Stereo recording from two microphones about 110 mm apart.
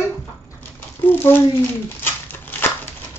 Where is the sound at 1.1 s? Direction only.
20° left (ahead or behind).